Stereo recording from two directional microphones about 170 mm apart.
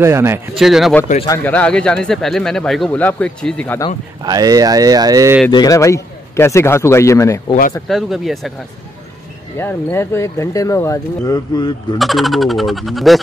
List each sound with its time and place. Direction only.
0.0 s speech: 15° right (ahead or behind)
0.6 s speech: centre (ahead or behind)
4.2 s speech: 20° right (ahead or behind)
5.5 s a man's voice: 20° left (ahead or behind)
7.9 s speech: centre (ahead or behind)
9.6 s speech: 15° left (ahead or behind)
12.0 s speech: centre (ahead or behind)